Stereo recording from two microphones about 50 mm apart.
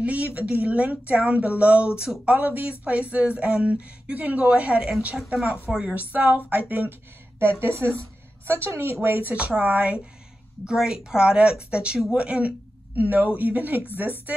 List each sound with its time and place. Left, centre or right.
0.0 s speech: right
2.3 s a woman's voice: right
5.9 s a woman's voice: right
9.6 s speech: right
10.6 s a woman's voice: centre; by 13.8 s right